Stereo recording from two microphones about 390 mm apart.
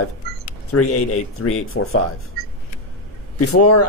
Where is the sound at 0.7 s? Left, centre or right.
Left.